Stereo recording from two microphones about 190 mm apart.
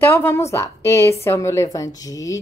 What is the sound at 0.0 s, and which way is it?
A woman's voice, 10° left (ahead or behind).